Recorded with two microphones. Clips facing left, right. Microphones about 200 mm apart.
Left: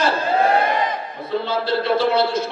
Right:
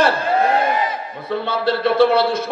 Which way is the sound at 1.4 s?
55° right (ahead or behind).